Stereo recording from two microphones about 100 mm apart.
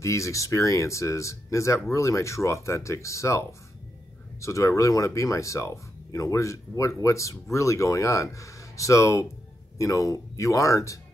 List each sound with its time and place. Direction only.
0.0 s speech: 30° left (ahead or behind)